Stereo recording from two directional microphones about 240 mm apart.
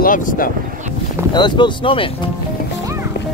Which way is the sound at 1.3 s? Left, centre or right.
Centre.